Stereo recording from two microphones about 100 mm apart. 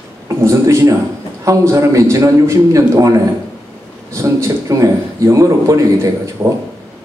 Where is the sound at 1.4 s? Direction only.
30° right (ahead or behind).